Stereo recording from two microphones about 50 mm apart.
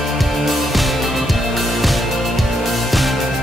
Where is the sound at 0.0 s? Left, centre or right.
Centre.